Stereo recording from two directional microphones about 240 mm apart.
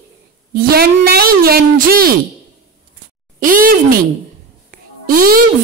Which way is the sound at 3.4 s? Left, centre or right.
Right.